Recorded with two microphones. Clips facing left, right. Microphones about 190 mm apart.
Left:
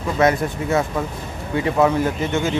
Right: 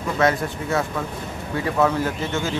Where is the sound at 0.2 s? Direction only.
20° left (ahead or behind).